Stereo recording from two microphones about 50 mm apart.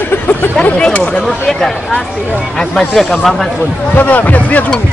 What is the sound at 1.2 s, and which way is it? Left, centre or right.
Speech, centre.